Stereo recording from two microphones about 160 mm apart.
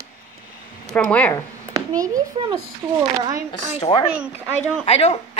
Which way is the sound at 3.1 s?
25° right (ahead or behind).